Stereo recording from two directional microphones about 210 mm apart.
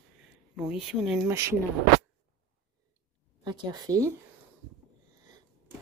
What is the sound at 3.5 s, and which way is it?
Speech, 20° right (ahead or behind).